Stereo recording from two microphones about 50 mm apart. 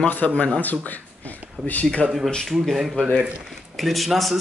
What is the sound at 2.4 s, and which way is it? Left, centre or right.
Speech, centre.